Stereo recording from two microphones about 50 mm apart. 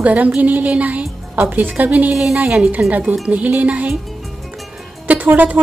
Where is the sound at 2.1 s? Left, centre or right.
Centre.